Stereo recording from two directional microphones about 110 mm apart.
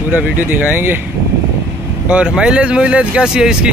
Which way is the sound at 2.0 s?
10° right (ahead or behind).